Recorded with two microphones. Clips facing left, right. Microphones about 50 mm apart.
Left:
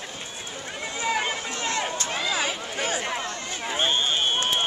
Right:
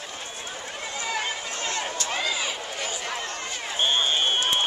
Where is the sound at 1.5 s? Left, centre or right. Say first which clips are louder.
Left 2 dB; left.